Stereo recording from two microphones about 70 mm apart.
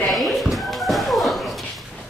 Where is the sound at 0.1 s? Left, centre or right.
Centre.